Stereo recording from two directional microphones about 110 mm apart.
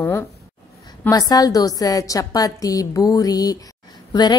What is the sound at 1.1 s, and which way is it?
A woman's voice, 35° left (ahead or behind).